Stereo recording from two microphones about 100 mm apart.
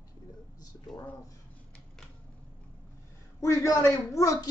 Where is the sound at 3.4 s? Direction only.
30° left (ahead or behind).